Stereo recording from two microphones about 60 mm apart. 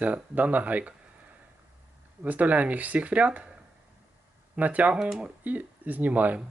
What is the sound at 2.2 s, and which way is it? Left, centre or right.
Speech, right.